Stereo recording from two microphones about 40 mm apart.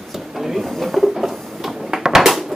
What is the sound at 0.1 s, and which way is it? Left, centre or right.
Drawer open or close, centre.